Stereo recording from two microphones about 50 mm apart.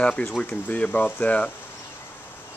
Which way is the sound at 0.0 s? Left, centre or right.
Left.